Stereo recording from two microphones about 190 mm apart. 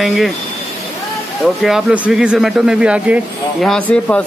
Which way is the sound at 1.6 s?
5° right (ahead or behind).